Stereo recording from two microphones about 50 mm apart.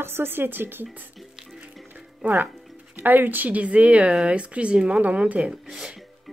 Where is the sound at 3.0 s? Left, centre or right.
Right.